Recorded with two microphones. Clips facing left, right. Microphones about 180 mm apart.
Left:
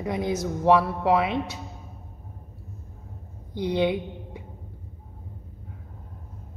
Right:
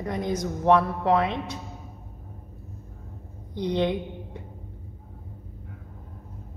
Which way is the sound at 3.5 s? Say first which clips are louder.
Left 1 dB; 10° left (ahead or behind).